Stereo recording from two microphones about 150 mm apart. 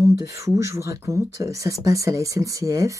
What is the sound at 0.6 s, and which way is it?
Speech, 20° right (ahead or behind).